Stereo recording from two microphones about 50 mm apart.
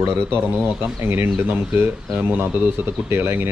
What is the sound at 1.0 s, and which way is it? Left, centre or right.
Speech, right.